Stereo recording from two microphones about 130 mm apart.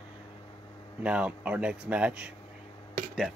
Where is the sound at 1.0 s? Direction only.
10° right (ahead or behind).